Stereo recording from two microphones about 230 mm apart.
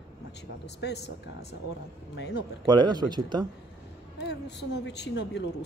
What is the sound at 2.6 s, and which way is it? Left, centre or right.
Speech, centre.